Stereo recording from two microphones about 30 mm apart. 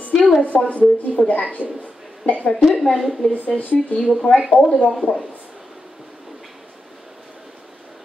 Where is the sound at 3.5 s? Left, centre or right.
Left.